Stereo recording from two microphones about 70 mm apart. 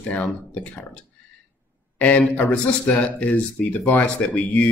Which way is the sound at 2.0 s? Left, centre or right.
Left.